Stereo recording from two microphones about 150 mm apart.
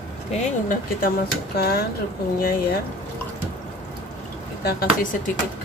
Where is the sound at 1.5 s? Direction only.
90° left.